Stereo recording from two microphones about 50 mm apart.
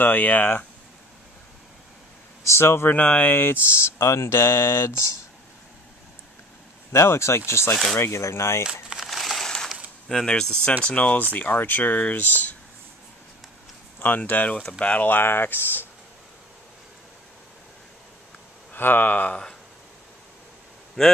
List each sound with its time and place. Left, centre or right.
0.0 s speech: left
2.4 s speech: left
3.2 s speech: left
6.9 s speech: left
8.9 s crushing: centre
10.0 s speech: centre
10.9 s speech: left
13.9 s speech: left
18.7 s speech: left
21.0 s speech: centre